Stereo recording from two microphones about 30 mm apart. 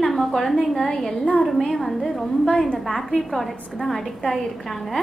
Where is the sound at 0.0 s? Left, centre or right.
Centre.